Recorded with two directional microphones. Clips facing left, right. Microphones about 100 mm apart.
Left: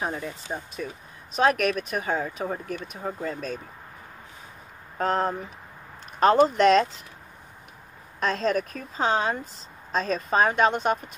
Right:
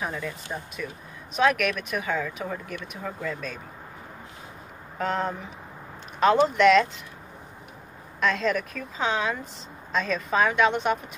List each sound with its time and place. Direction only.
0.0 s speech: 30° left (ahead or behind)
4.9 s speech: 40° left (ahead or behind)
8.2 s speech: 40° left (ahead or behind)